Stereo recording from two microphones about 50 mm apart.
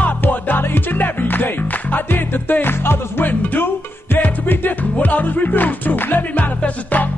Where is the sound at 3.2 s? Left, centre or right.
Left.